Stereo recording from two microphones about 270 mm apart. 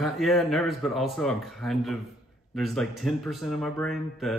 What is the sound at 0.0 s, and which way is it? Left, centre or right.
A man's voice, centre.